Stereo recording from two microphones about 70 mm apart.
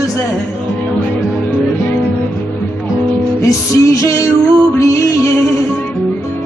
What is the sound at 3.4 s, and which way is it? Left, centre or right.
Music, left.